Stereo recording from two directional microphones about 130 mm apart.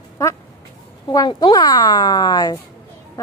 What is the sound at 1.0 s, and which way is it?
A woman's voice, 30° left (ahead or behind).